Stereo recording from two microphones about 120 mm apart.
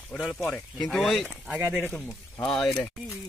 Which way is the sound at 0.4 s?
20° left (ahead or behind).